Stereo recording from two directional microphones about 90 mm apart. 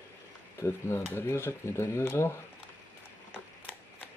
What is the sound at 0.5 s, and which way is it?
Speech, 30° left (ahead or behind).